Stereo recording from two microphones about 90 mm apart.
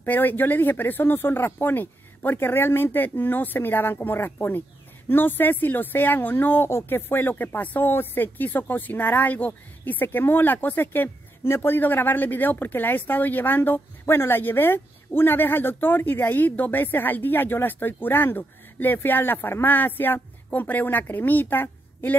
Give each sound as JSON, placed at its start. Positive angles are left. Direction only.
{"t": 0.0, "sound": "speech", "side_deg": 20}